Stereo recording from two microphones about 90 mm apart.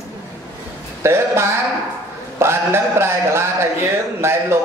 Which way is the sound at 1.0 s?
30° right (ahead or behind).